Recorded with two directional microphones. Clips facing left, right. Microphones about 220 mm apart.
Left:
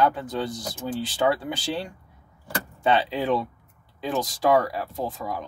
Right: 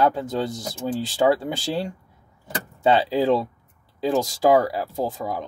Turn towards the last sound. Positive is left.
turn(degrees=-25)  # may be behind; listen again after turning